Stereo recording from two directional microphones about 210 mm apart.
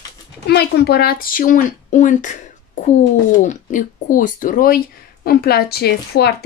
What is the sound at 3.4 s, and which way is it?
A woman's voice, 35° left (ahead or behind).